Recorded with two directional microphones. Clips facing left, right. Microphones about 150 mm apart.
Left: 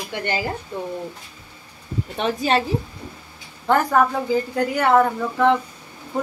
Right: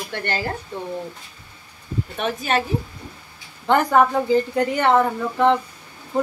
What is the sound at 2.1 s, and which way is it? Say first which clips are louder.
Speech: left 2 dB; 30° left (ahead or behind).